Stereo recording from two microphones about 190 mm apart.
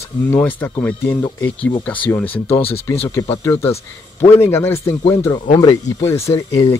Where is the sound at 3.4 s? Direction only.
15° left (ahead or behind).